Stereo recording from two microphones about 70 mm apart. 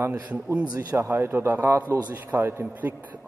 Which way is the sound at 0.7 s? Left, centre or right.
Right.